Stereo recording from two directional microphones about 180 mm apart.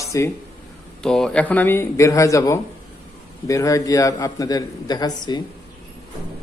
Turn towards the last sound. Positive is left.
turn(degrees=25)  # may be behind; listen again after turning